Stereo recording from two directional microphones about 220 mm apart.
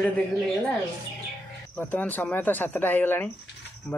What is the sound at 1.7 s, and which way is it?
Speech, 5° left (ahead or behind).